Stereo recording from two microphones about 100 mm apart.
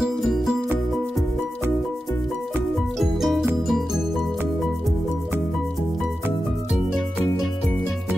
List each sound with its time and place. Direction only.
0.0 s music: 5° right (ahead or behind)
3.0 s music: centre (ahead or behind)